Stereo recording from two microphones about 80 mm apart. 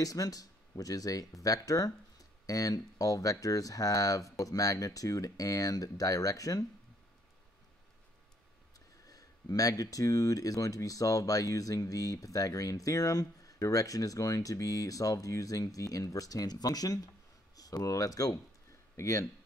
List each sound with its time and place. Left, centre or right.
0.0 s speech: left
9.0 s speech: left